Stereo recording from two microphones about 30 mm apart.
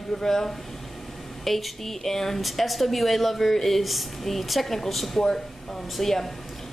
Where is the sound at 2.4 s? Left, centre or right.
Centre.